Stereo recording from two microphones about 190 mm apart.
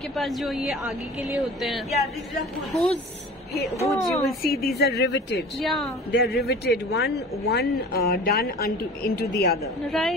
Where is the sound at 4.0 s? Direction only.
Centre (ahead or behind).